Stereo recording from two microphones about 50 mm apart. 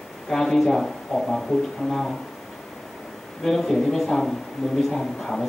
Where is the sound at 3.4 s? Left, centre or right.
Centre.